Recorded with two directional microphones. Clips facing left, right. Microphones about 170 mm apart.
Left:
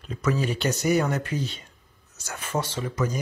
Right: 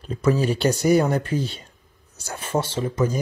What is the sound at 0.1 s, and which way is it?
Speech, 35° right (ahead or behind).